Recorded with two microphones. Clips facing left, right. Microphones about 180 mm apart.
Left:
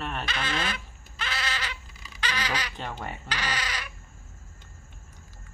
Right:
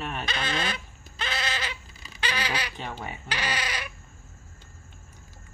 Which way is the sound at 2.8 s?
5° right (ahead or behind).